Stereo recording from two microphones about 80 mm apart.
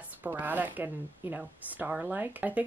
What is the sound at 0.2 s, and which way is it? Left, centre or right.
Speech, right.